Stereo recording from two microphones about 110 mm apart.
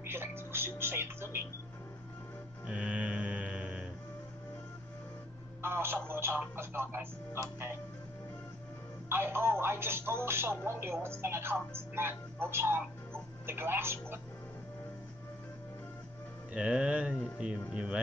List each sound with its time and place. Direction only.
0.0 s music: 20° right (ahead or behind)
2.6 s mantra: 10° right (ahead or behind)
5.6 s telephone: 20° right (ahead or behind)
6.0 s speech: 20° right (ahead or behind)
9.1 s speech: 20° right (ahead or behind)
16.5 s music: 10° right (ahead or behind)